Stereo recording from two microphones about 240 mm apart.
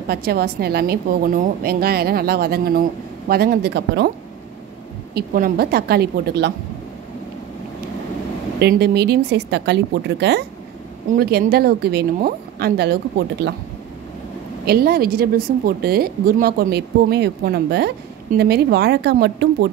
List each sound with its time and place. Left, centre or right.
0.1 s a woman's voice: right
5.1 s a woman's voice: right
8.5 s a woman's voice: right
14.6 s a woman's voice: right